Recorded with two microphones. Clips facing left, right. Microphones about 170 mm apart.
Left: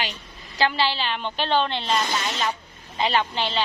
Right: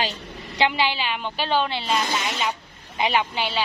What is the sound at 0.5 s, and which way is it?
A woman's voice, 15° right (ahead or behind).